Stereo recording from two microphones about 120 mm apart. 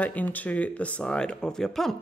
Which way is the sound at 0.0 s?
15° left (ahead or behind).